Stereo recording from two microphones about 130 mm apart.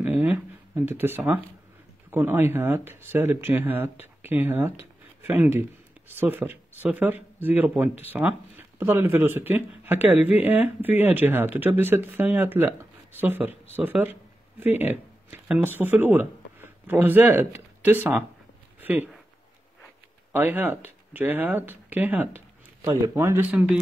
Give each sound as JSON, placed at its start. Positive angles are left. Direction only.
{"t": 0.0, "sound": "speech", "side_deg": -15}
{"t": 18.8, "sound": "a sound", "side_deg": -15}
{"t": 20.3, "sound": "speech", "side_deg": -15}
{"t": 23.5, "sound": "speech", "side_deg": -10}